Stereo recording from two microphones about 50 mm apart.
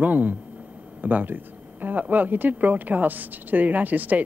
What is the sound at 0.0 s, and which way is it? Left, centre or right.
Speech, right.